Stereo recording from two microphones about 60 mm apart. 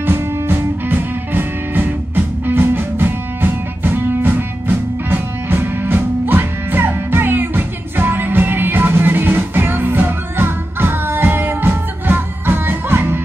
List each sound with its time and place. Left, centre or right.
0.0 s music: right